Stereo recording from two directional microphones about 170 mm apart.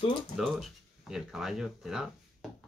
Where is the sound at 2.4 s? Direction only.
Centre (ahead or behind).